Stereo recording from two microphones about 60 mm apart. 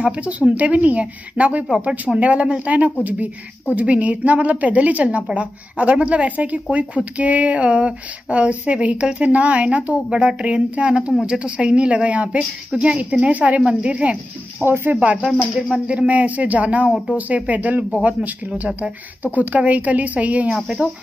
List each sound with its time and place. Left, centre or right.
0.0 s a woman's voice: right
14.6 s speech: right
15.9 s a woman's voice: right